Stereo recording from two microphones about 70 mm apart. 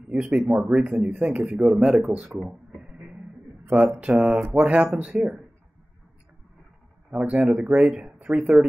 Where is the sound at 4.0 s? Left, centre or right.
Centre.